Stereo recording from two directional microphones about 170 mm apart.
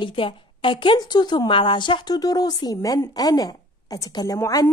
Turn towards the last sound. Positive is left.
turn(degrees=20)  # may be behind; listen again after turning